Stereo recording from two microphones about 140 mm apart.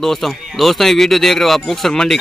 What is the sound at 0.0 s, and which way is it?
Speech, centre (ahead or behind).